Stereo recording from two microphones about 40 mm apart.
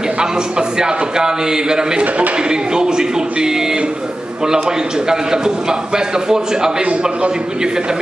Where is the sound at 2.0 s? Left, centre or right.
Right.